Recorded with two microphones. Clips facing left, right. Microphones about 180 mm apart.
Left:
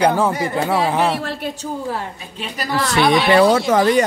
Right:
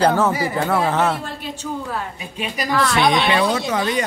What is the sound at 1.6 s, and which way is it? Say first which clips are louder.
Speech: left 2 dB; 30° left (ahead or behind).